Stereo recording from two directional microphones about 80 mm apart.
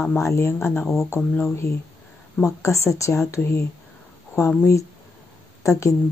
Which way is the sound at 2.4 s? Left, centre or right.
Left.